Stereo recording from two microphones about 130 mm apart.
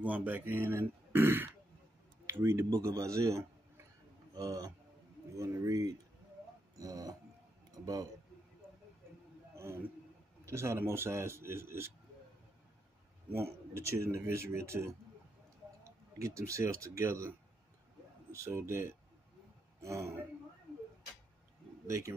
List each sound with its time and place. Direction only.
0.0 s a man's voice: 15° right (ahead or behind); by 7.2 s 30° right (ahead or behind)
7.7 s a sound: 30° right (ahead or behind)
9.6 s a sound: 20° right (ahead or behind)
10.4 s a man's voice: 20° right (ahead or behind)
13.3 s a man's voice: 20° right (ahead or behind)
15.8 s a sound: 25° right (ahead or behind)
16.8 s a man's voice: 20° right (ahead or behind)
18.3 s a man's voice: 20° right (ahead or behind)
21.8 s speech: 25° right (ahead or behind)